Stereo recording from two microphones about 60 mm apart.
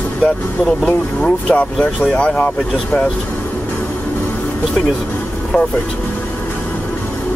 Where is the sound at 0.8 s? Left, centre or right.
Centre.